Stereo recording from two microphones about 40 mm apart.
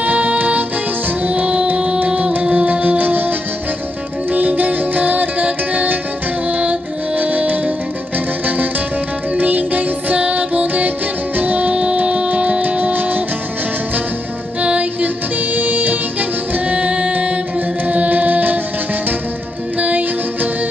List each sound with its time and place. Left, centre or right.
0.0 s music: right
11.7 s music: right
14.6 s music: right
15.5 s music: right
19.8 s music: right